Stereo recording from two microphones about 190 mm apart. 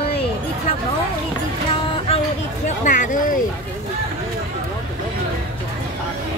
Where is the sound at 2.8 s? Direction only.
40° left (ahead or behind).